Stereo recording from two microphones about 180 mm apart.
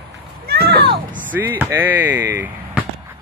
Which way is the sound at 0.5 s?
65° right (ahead or behind).